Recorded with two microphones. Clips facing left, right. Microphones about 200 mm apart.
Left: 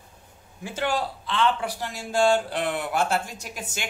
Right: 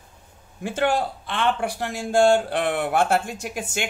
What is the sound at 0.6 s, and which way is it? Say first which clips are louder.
Speech: right 5 dB; 55° right (ahead or behind).